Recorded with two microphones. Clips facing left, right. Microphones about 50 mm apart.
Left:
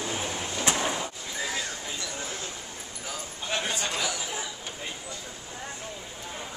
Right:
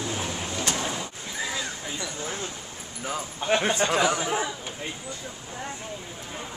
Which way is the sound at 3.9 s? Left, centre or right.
Right.